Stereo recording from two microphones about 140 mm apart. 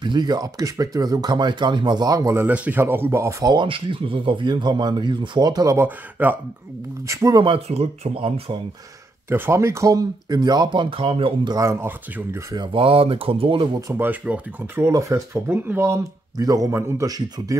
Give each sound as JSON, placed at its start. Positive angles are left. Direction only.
{"t": 0.0, "sound": "speech", "side_deg": -30}
{"t": 3.5, "sound": "speech", "side_deg": -35}
{"t": 5.9, "sound": "speech", "side_deg": -10}
{"t": 7.1, "sound": "speech", "side_deg": -25}
{"t": 7.4, "sound": "speech", "side_deg": -45}
{"t": 9.3, "sound": "speech", "side_deg": -20}
{"t": 11.5, "sound": "speech", "side_deg": -20}
{"t": 12.7, "sound": "speech", "side_deg": -40}
{"t": 13.7, "sound": "speech", "side_deg": -20}
{"t": 14.9, "sound": "speech", "side_deg": -20}